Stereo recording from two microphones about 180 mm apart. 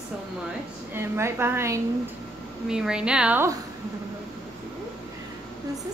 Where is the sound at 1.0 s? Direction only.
15° right (ahead or behind).